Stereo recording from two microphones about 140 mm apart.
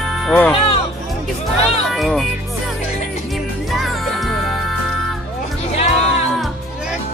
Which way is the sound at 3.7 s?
Centre (ahead or behind).